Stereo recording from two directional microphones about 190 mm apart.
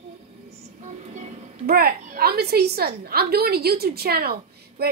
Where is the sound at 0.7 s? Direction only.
35° right (ahead or behind).